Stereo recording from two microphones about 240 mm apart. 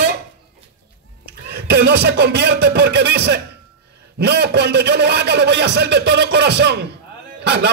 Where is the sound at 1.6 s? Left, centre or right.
Right.